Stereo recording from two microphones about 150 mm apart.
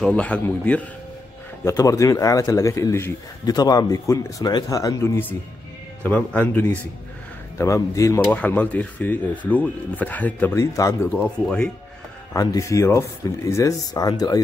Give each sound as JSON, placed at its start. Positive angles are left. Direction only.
{"t": 0.0, "sound": "speech", "side_deg": 10}
{"t": 1.6, "sound": "a man's voice", "side_deg": 20}
{"t": 8.3, "sound": "speech", "side_deg": 10}
{"t": 11.1, "sound": "speech", "side_deg": 5}
{"t": 12.4, "sound": "a man's voice", "side_deg": 20}